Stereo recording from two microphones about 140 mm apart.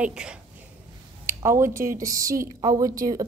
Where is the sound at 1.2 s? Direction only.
20° right (ahead or behind).